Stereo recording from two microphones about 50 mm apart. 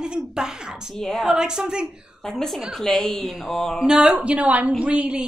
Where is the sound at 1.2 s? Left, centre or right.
Centre.